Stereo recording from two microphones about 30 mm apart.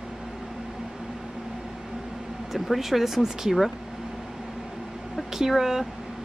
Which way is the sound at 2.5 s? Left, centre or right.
Centre.